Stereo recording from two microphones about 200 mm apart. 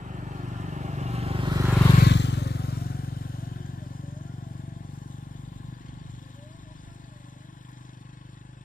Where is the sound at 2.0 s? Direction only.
60° left (ahead or behind).